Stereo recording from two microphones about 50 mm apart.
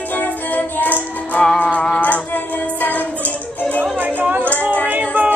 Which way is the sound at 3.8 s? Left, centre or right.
Right.